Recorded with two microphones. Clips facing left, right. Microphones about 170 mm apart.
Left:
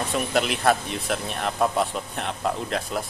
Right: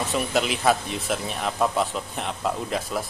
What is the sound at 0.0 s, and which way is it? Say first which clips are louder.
Speech: even; centre (ahead or behind).